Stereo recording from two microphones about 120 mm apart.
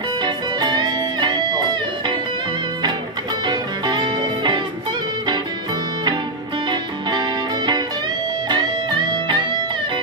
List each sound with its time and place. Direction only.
0.2 s music: 35° right (ahead or behind)
3.4 s music: 35° right (ahead or behind)
6.7 s music: 40° right (ahead or behind)